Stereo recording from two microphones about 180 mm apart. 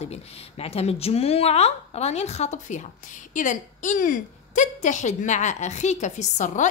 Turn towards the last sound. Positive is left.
turn(degrees=40)  # may be behind; listen again after turning